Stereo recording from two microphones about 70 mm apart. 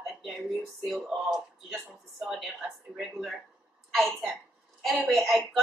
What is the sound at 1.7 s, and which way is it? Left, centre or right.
A woman's voice, centre.